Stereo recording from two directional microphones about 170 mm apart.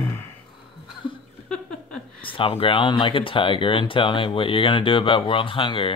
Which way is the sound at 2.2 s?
30° left (ahead or behind).